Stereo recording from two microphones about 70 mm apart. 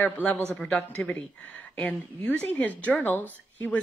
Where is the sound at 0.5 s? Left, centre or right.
Centre.